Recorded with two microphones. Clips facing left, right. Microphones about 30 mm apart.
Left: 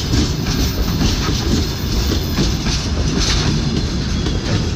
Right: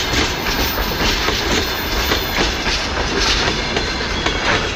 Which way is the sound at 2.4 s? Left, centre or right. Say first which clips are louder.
Right 2 dB; right.